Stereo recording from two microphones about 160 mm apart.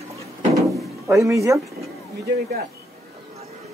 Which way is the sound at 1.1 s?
20° right (ahead or behind).